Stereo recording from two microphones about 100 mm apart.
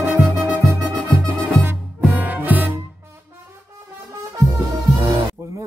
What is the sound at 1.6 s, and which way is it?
Music, 20° right (ahead or behind).